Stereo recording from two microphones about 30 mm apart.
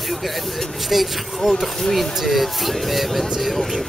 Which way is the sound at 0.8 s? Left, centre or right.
Centre.